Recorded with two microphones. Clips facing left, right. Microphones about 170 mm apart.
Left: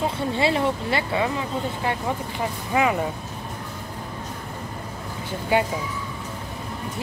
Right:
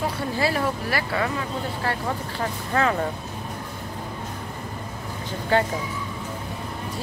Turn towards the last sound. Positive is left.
turn(degrees=10)  # may be behind; listen again after turning